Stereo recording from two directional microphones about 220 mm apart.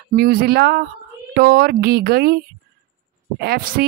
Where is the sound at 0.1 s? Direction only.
45° right (ahead or behind).